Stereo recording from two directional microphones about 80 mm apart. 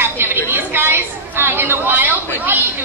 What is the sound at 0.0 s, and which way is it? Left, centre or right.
Chatter, right.